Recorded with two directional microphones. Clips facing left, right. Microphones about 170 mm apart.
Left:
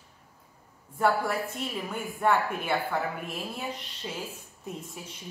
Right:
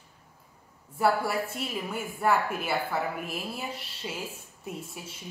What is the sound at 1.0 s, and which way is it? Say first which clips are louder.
A woman's voice: even; 5° right (ahead or behind).